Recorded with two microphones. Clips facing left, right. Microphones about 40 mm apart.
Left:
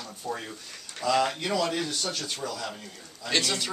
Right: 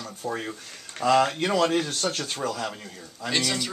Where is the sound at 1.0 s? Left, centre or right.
Right.